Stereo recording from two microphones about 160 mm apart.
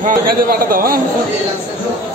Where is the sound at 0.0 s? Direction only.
65° right (ahead or behind).